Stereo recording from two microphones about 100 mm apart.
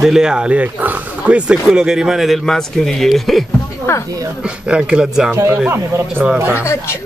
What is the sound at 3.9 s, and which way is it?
Speech, 25° left (ahead or behind).